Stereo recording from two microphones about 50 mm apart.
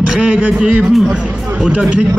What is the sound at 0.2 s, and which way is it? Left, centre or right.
Speech, right.